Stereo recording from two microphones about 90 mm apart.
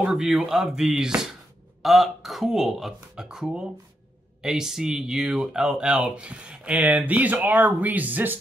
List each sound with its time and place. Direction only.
0.0 s speech: 5° right (ahead or behind); by 8.4 s 20° right (ahead or behind)